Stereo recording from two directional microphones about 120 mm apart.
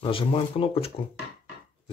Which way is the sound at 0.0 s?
50° left (ahead or behind).